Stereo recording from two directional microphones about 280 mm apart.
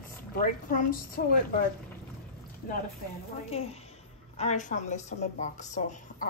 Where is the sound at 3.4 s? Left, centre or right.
Left.